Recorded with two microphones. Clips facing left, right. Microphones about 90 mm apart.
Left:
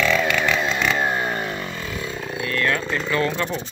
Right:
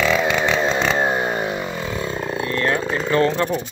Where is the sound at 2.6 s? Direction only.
35° right (ahead or behind).